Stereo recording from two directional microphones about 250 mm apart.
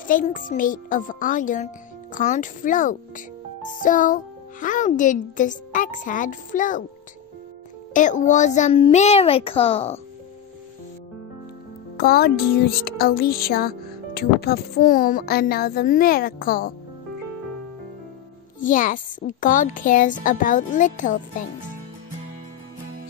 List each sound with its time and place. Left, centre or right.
0.0 s music: left
7.9 s a child's voice: left
12.0 s music: left
18.6 s music: left